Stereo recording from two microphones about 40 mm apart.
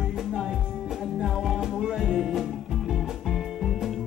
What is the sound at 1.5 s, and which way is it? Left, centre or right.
Music, centre.